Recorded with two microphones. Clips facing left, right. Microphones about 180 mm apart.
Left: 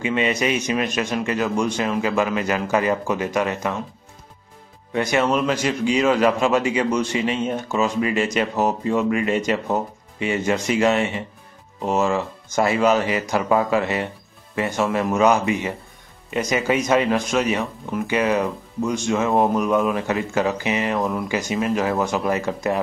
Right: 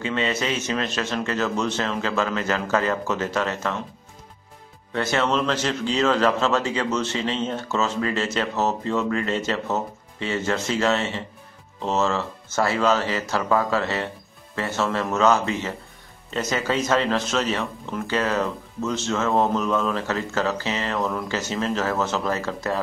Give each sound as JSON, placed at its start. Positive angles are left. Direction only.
{"t": 0.0, "sound": "speech", "side_deg": 15}
{"t": 4.9, "sound": "speech", "side_deg": 15}